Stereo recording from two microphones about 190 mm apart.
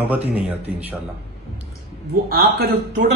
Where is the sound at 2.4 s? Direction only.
60° right (ahead or behind).